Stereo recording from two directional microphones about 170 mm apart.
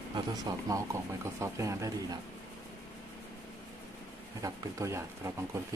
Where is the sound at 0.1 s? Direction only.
25° right (ahead or behind).